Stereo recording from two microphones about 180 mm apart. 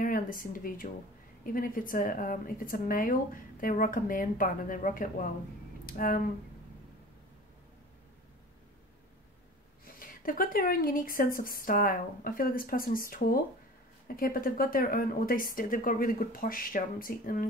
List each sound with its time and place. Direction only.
0.0 s a woman's voice: 50° left (ahead or behind)
9.8 s speech: 50° left (ahead or behind)